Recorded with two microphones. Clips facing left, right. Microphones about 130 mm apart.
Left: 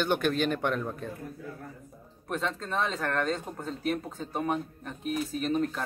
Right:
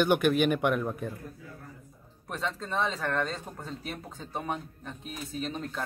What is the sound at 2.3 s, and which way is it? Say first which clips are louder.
Speech: left 1 dB; centre (ahead or behind).